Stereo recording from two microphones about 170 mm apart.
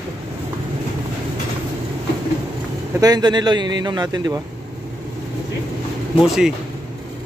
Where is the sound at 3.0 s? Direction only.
25° right (ahead or behind).